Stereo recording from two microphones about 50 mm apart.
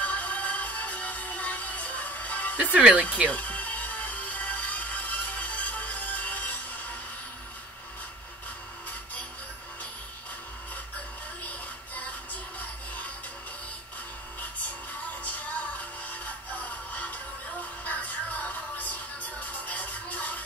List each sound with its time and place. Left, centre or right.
0.0 s music: left
2.5 s speech: right
3.3 s music: left
11.4 s music: left
15.2 s music: left